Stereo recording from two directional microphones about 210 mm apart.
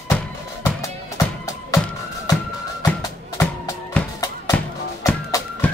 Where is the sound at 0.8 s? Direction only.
15° left (ahead or behind).